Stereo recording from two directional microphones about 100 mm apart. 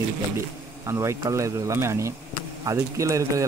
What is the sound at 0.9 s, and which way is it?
Speech, 30° right (ahead or behind).